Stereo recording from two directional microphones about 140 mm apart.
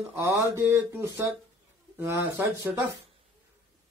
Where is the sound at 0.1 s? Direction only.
20° right (ahead or behind).